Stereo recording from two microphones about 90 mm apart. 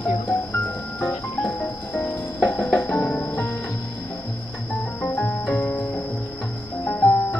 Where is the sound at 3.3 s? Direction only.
20° left (ahead or behind).